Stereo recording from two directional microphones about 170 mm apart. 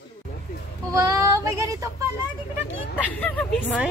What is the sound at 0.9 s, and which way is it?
Female singing, 20° right (ahead or behind).